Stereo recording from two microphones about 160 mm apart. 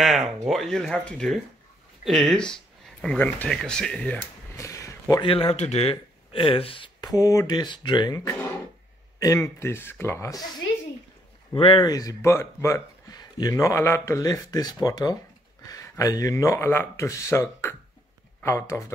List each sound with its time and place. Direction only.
0.0 s speech: centre (ahead or behind)
4.6 s a sound: 20° left (ahead or behind)
5.2 s speech: 35° left (ahead or behind)
11.5 s speech: 35° left (ahead or behind); by 18.9 s 15° left (ahead or behind)